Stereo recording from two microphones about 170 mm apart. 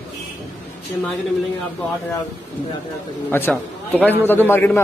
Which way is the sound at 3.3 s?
10° left (ahead or behind).